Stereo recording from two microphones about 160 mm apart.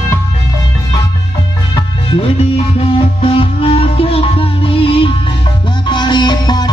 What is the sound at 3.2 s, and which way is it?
Music, 35° left (ahead or behind).